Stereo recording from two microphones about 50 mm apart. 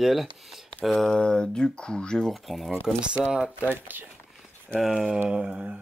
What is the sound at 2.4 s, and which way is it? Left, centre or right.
Speech, centre.